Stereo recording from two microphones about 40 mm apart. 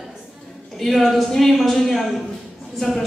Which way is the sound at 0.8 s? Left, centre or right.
Centre.